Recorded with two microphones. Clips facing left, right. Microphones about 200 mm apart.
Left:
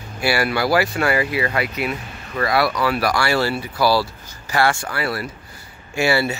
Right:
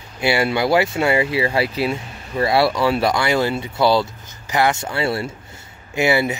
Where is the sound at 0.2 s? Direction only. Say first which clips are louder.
Right 2 dB; 20° right (ahead or behind).